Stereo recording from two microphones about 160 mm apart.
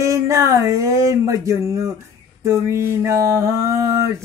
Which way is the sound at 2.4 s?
15° right (ahead or behind).